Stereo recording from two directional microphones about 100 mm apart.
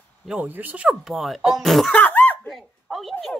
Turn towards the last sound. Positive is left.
turn(degrees=0)  # may be behind; listen again after turning